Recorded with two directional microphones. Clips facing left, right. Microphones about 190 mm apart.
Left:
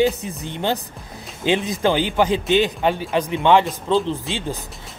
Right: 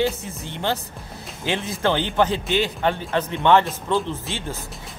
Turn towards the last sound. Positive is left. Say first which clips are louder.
# left 4 dB
turn(degrees=15)  # may be behind; listen again after turning